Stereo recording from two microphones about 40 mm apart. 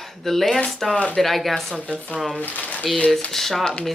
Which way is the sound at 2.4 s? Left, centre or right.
Left.